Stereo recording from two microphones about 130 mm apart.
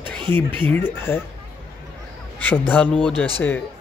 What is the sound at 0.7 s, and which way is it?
Speech, 15° left (ahead or behind).